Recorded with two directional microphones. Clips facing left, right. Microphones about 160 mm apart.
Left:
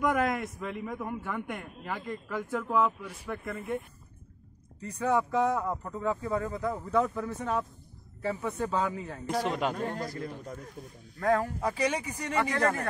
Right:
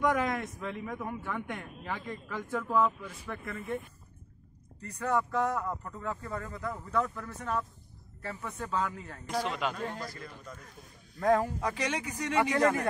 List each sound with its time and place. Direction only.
0.0 s a man's voice: 5° left (ahead or behind)
4.8 s a man's voice: 10° left (ahead or behind)
9.5 s a man's voice: 45° left (ahead or behind)
11.1 s a man's voice: 15° right (ahead or behind)
11.6 s a man's voice: 10° left (ahead or behind)
12.4 s a man's voice: 10° right (ahead or behind)